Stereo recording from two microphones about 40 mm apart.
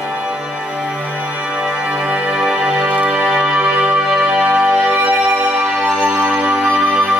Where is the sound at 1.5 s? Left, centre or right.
Right.